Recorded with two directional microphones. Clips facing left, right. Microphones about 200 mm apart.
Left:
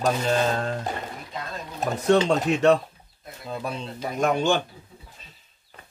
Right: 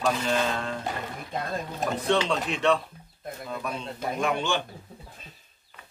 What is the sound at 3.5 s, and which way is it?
Speech, 30° left (ahead or behind).